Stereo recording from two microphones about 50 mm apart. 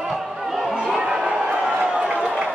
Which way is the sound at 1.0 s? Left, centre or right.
Centre.